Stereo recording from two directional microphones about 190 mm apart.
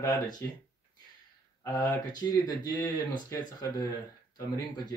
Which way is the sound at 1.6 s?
15° left (ahead or behind).